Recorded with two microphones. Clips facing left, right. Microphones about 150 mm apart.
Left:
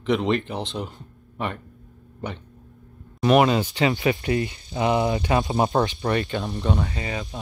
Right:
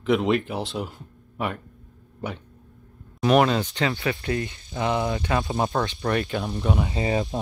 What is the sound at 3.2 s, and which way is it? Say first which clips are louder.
Speech: left 1 dB; 5° left (ahead or behind).